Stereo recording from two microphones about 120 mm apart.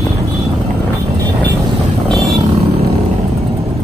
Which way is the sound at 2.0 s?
5° left (ahead or behind).